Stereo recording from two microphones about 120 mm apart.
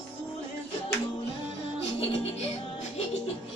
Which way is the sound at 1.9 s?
60° left (ahead or behind).